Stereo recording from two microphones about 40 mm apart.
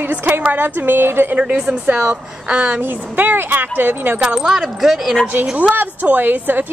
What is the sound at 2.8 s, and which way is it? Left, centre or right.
A woman's voice, right.